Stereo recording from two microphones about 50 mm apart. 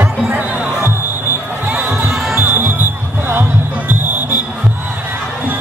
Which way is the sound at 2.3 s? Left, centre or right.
Right.